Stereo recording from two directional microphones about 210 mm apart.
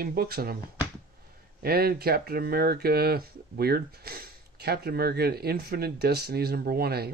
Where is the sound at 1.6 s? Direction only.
45° right (ahead or behind).